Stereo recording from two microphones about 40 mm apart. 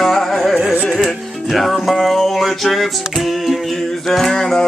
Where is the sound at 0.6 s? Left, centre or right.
Right.